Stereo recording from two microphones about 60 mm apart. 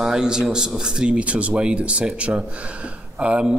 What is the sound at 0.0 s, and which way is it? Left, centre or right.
A man's voice, centre.